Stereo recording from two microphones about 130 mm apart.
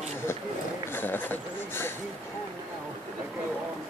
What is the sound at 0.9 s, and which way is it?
Speech, 15° left (ahead or behind).